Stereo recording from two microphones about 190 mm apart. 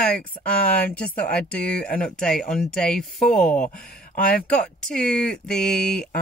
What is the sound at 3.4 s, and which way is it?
Speech, 45° left (ahead or behind).